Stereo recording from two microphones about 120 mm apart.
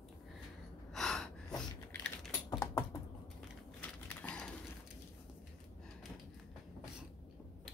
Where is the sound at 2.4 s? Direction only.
30° left (ahead or behind).